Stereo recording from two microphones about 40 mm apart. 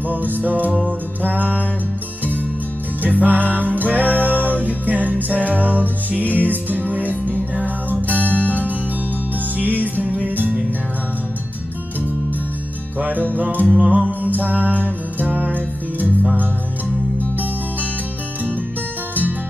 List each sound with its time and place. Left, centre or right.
0.1 s music: right
3.0 s music: right
8.1 s music: left
8.4 s music: right
10.0 s music: right
13.0 s music: right